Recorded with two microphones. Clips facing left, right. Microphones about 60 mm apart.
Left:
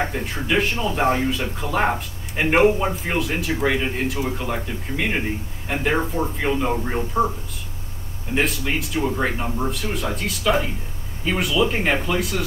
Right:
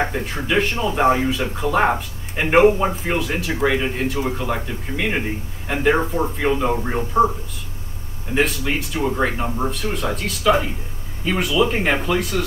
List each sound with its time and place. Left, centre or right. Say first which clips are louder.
0.3 s a man's voice: right 1 dB; centre
8.4 s a man's voice: right 2 dB; centre